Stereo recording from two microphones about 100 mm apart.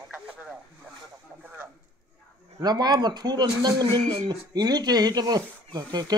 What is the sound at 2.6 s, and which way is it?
Speech, 45° right (ahead or behind).